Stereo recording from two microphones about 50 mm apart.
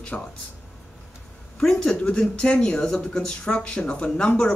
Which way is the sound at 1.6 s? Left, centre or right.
Centre.